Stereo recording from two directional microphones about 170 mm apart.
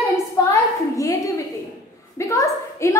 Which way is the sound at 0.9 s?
20° left (ahead or behind).